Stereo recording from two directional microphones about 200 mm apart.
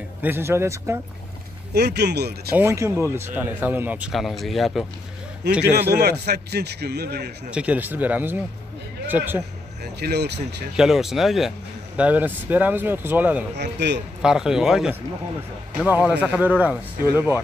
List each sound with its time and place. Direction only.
0.2 s speech: 10° right (ahead or behind)
1.7 s a man's voice: 55° right (ahead or behind)
2.5 s speech: 15° right (ahead or behind)
5.6 s a man's voice: 55° right (ahead or behind)
7.5 s speech: 5° right (ahead or behind)
9.9 s a man's voice: 55° right (ahead or behind)
10.8 s speech: centre (ahead or behind)
13.6 s a man's voice: 60° right (ahead or behind)
14.2 s speech: 5° right (ahead or behind)